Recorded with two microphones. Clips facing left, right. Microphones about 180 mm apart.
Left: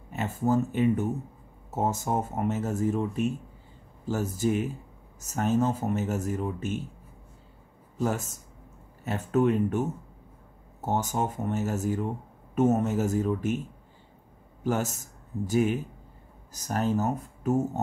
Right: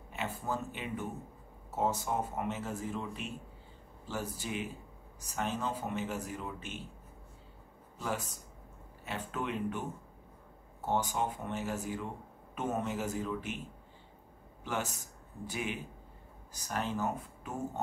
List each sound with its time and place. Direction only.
0.1 s speech: 45° left (ahead or behind)
8.0 s speech: 45° left (ahead or behind)
14.6 s speech: 40° left (ahead or behind)